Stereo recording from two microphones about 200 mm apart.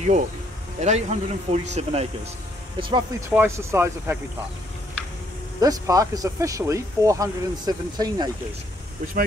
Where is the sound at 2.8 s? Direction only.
20° right (ahead or behind).